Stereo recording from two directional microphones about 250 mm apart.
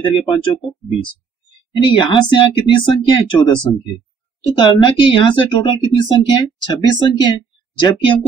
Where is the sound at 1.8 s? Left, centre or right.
Centre.